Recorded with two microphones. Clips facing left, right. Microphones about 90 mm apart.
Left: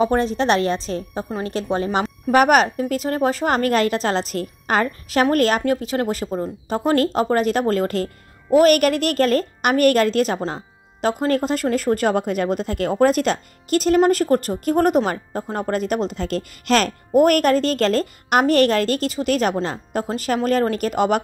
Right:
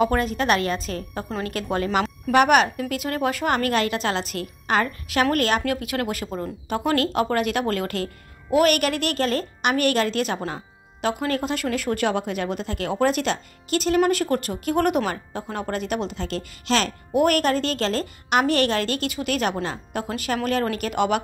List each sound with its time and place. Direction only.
0.0 s a woman's voice: 30° left (ahead or behind)
2.2 s a woman's voice: 40° left (ahead or behind)